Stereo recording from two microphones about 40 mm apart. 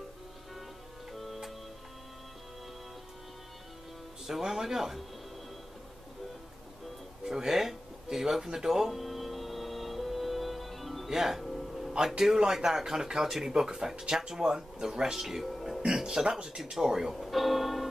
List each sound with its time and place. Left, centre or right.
1.1 s music: centre
4.3 s speech: centre
7.2 s a sound: centre
11.1 s music: centre
12.0 s speech: centre
15.4 s music: centre
15.8 s speech: centre